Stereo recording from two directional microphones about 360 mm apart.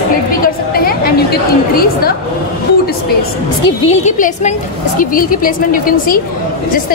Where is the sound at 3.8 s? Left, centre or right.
Centre.